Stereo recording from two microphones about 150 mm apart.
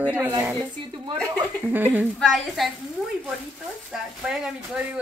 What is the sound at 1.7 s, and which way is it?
Speech, 10° right (ahead or behind).